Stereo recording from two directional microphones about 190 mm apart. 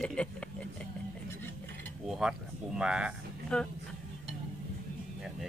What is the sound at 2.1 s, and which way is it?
Speech, 5° right (ahead or behind).